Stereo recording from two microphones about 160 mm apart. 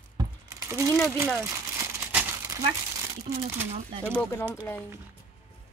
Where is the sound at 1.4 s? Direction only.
20° right (ahead or behind).